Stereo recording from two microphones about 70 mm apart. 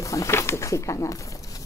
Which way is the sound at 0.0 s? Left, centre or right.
Left.